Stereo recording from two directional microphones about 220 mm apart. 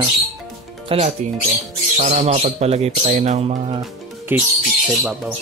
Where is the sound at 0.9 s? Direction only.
25° right (ahead or behind).